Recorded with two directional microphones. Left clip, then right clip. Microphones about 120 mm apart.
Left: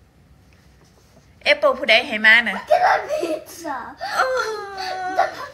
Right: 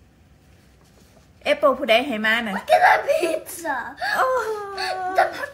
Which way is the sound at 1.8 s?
45° right (ahead or behind).